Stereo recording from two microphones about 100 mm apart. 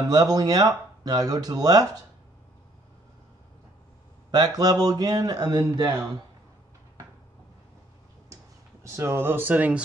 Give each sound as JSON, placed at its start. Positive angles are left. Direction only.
{"t": 0.1, "sound": "speech", "side_deg": -40}
{"t": 4.3, "sound": "speech", "side_deg": -40}
{"t": 8.8, "sound": "speech", "side_deg": -25}